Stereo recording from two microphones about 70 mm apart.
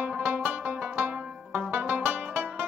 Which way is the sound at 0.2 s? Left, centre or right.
Right.